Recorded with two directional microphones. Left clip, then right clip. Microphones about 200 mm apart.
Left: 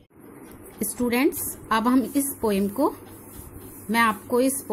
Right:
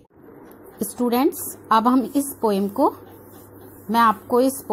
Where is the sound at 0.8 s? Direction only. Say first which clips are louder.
Right 3 dB; 5° right (ahead or behind).